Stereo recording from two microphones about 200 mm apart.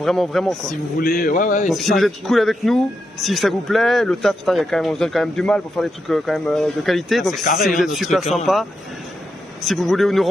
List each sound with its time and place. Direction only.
0.0 s speech: centre (ahead or behind)
1.0 s speech: 50° left (ahead or behind)
1.7 s speech: centre (ahead or behind)